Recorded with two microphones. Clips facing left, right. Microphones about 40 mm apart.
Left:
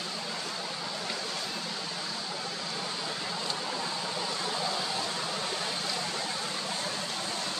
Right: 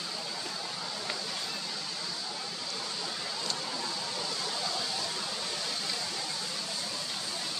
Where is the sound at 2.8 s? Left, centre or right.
Centre; by 7.3 s left.